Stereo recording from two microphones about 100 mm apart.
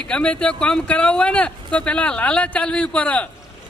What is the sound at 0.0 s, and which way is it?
A man's voice, 10° left (ahead or behind).